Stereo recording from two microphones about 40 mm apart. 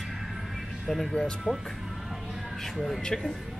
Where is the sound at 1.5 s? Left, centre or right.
Right.